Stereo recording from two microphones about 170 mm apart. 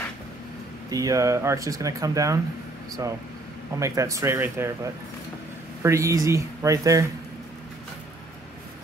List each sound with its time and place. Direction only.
0.8 s speech: 20° right (ahead or behind)
3.8 s speech: 20° right (ahead or behind)